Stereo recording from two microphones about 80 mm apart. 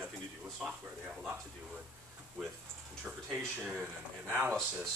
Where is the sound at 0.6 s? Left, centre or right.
Centre.